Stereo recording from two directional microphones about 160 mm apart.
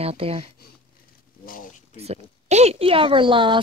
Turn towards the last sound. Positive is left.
turn(degrees=-30)  # may be behind; listen again after turning